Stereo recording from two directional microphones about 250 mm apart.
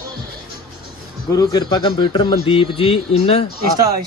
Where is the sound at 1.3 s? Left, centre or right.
Centre.